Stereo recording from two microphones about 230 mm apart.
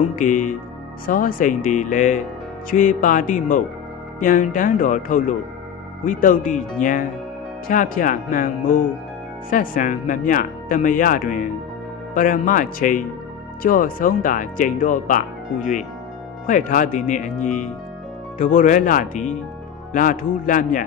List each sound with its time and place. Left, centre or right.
0.1 s speech: left